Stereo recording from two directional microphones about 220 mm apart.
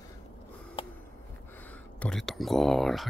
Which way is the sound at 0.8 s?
25° left (ahead or behind).